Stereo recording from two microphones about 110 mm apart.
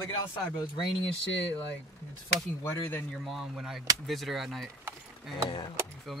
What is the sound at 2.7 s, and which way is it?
Speech, 20° left (ahead or behind).